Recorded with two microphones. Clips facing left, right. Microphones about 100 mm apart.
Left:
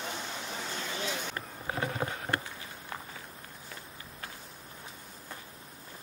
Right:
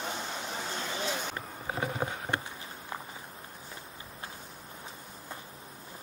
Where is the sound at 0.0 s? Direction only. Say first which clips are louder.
Right 2 dB; 15° right (ahead or behind).